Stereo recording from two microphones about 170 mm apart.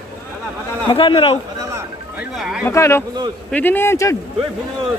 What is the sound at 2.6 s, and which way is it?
A man's voice, 15° left (ahead or behind).